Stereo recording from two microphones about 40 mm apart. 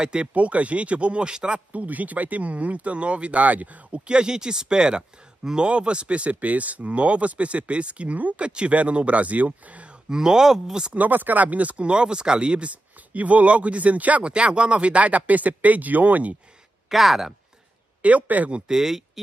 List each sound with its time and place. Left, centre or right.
0.0 s speech: right
0.3 s speech: right
1.7 s speech: right
4.1 s speech: right
8.4 s speech: right
10.0 s speech: centre
11.0 s speech: right
13.1 s speech: right
14.2 s speech: right
16.9 s speech: centre
18.0 s speech: right
18.7 s speech: centre